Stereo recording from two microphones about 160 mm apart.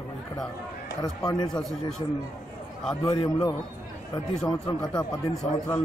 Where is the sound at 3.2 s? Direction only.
30° left (ahead or behind).